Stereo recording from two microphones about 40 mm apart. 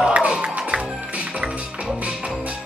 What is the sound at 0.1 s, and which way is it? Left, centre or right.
Music, right.